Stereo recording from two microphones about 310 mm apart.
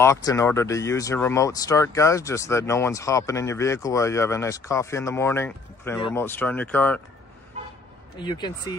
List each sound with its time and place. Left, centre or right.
0.0 s speech: centre
8.2 s speech: centre